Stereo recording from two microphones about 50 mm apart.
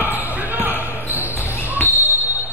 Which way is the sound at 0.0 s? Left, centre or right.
Right.